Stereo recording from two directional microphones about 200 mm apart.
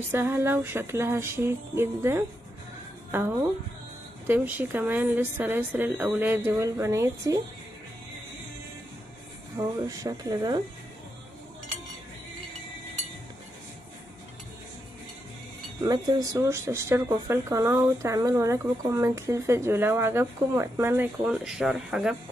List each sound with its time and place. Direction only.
0.1 s speech: 10° right (ahead or behind)
9.6 s speech: 15° right (ahead or behind)
15.8 s speech: 15° right (ahead or behind)